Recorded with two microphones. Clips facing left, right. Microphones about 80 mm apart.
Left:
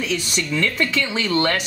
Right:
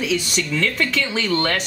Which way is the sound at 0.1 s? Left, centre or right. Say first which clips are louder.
Right 1 dB; centre.